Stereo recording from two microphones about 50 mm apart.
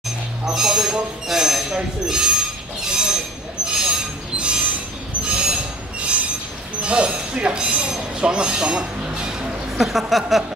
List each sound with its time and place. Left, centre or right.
0.5 s speech: centre
3.6 s train wheels squealing: centre
6.8 s speech: right
9.8 s speech: centre